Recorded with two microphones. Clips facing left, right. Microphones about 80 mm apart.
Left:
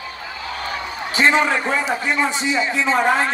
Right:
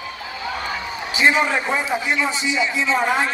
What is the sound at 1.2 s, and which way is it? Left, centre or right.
A man's voice, left.